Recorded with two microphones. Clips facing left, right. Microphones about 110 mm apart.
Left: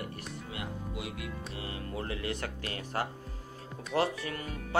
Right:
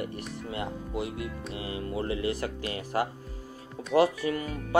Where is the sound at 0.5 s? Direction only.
35° right (ahead or behind).